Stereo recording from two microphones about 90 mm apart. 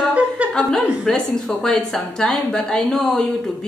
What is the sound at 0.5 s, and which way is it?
A woman's voice, 5° left (ahead or behind).